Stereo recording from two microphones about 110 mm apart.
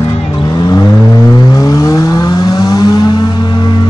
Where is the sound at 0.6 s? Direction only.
35° left (ahead or behind).